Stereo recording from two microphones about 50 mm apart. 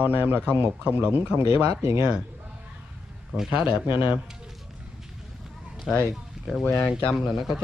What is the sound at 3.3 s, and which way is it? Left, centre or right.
Speech, centre.